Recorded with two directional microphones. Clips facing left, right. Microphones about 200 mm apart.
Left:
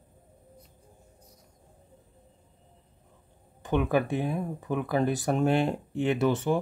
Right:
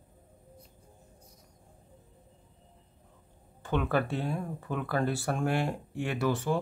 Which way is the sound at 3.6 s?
15° left (ahead or behind).